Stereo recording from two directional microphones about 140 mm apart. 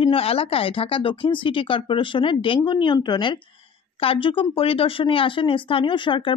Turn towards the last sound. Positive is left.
turn(degrees=35)  # may be behind; listen again after turning